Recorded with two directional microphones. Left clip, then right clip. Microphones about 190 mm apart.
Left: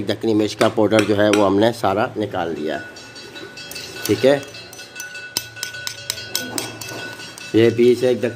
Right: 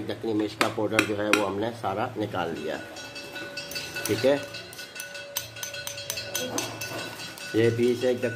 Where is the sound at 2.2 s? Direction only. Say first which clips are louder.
Left 7 dB; 35° left (ahead or behind).